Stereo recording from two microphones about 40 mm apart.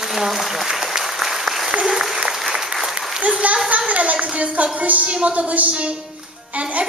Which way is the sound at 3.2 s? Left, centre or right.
Right.